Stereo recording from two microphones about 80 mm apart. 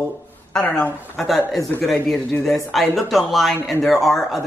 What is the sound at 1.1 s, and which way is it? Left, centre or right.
Speech, centre.